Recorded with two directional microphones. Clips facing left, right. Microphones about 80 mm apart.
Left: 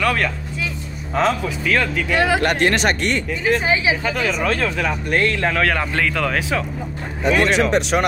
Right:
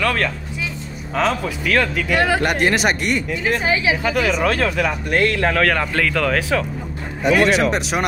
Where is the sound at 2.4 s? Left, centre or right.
Centre.